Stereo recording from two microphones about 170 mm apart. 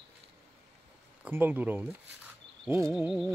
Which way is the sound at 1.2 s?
10° right (ahead or behind).